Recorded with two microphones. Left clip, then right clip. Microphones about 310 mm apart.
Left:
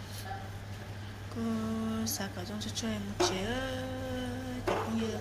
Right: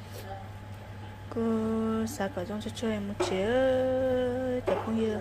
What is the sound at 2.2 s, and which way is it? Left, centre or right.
A woman's voice, centre.